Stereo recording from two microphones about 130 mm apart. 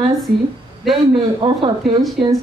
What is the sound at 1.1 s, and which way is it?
Speech, 45° right (ahead or behind).